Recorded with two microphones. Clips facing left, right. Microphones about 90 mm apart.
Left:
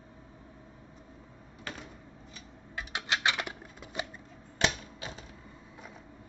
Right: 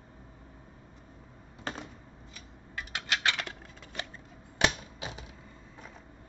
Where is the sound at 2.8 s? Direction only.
20° left (ahead or behind).